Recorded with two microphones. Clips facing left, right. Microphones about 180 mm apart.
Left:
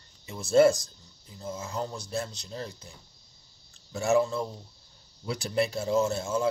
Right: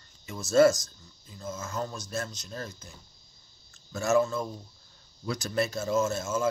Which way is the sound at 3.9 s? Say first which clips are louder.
Even; 15° left (ahead or behind).